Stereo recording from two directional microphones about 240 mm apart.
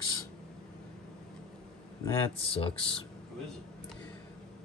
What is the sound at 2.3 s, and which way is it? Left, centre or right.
Speech, left.